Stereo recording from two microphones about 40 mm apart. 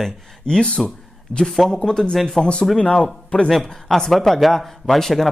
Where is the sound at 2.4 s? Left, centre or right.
Centre.